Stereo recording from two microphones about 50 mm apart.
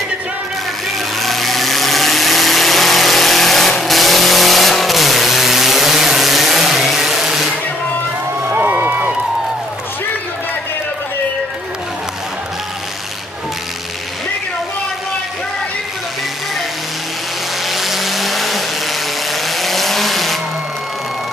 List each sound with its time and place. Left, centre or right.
1.2 s vehicle: centre
8.5 s a sound: right
17.6 s vehicle: centre